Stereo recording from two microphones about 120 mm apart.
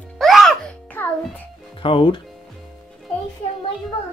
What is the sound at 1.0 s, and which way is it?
Music, 15° left (ahead or behind).